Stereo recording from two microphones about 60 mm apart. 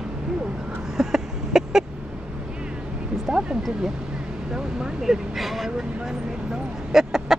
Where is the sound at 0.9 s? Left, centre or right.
Centre.